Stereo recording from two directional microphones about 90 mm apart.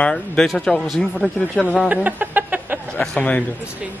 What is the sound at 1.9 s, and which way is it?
Chicken, 20° right (ahead or behind).